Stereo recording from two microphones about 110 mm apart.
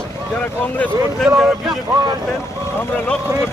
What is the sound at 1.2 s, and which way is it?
Speech, 5° right (ahead or behind).